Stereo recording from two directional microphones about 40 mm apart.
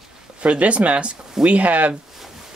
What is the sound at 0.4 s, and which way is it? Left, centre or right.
Speech, right.